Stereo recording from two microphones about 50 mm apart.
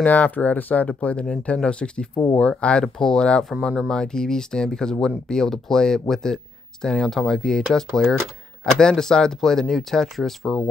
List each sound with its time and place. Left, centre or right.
0.0 s speech: left; by 3.4 s centre
3.6 s speech: centre
3.9 s speech: centre